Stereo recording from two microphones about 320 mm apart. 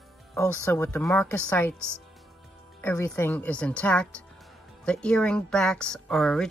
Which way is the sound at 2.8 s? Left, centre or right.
Centre.